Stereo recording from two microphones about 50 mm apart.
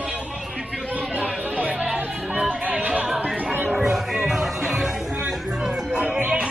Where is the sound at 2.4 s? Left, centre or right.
Centre.